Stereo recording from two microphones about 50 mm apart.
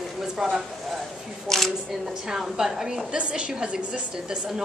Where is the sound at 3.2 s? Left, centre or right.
Right.